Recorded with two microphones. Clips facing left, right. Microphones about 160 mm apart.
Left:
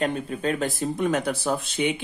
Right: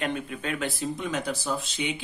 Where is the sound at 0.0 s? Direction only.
35° left (ahead or behind).